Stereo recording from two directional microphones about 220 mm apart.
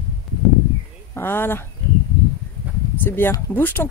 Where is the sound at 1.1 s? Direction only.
10° left (ahead or behind).